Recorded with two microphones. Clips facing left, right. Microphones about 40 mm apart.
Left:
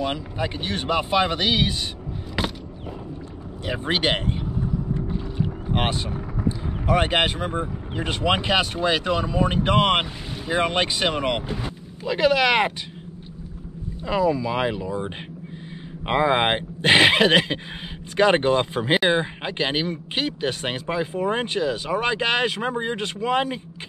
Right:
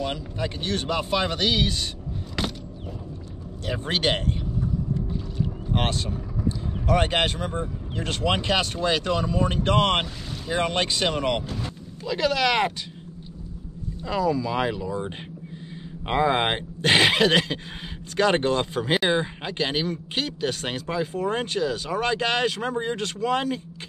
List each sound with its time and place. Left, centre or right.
0.0 s speech: centre
2.4 s a sound: centre
3.6 s speech: centre
5.4 s boat: centre
6.9 s speech: centre
14.0 s speech: centre